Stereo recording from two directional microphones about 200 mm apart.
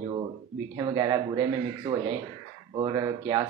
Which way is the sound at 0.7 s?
20° right (ahead or behind).